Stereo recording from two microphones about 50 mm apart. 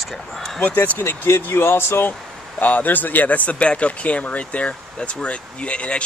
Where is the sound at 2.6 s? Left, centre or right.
Left.